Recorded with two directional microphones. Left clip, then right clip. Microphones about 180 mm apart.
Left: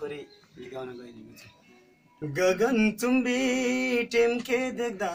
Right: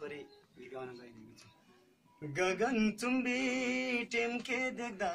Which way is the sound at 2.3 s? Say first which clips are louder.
Left 9 dB; 15° right (ahead or behind).